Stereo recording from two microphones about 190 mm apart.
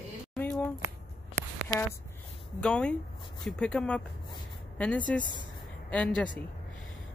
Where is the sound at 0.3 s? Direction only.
5° left (ahead or behind).